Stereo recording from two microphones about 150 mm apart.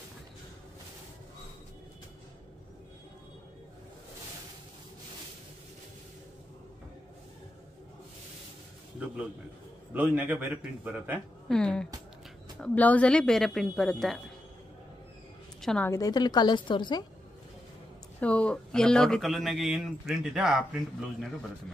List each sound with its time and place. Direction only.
9.0 s a man's voice: 5° right (ahead or behind)
11.4 s speech: 5° left (ahead or behind)
15.6 s a woman's voice: 5° left (ahead or behind)
15.9 s a woman's voice: 25° left (ahead or behind)
18.2 s speech: 10° left (ahead or behind)